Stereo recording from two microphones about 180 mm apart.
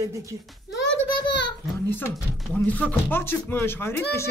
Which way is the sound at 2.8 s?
10° left (ahead or behind).